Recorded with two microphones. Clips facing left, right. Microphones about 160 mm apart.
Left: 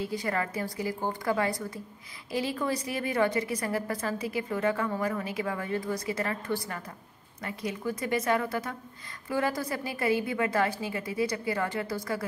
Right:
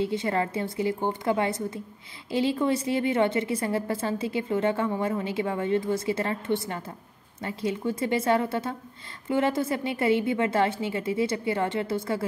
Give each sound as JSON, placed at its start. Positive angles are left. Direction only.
{"t": 0.0, "sound": "a woman's voice", "side_deg": -25}